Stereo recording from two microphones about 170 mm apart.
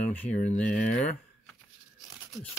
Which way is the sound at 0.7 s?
55° left (ahead or behind).